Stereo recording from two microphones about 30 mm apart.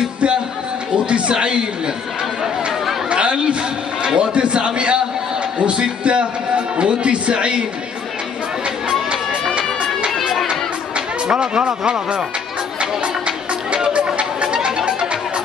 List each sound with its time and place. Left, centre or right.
1.0 s a sound: right
3.1 s chatter: right
4.0 s a man's voice: right
6.0 s speech: right
9.6 s run: right
13.9 s chatter: right